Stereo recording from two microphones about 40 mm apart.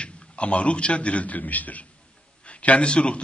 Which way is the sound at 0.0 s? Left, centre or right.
Left.